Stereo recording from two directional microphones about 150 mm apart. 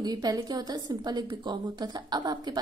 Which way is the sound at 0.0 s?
25° right (ahead or behind).